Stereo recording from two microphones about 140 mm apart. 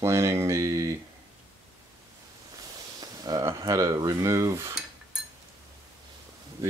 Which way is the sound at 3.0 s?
30° right (ahead or behind).